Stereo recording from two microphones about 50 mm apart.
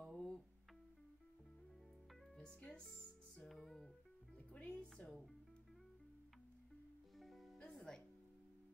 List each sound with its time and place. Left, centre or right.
0.0 s music: centre
2.3 s music: left
3.4 s music: centre
4.6 s a woman's voice: centre
7.2 s music: centre
7.5 s music: centre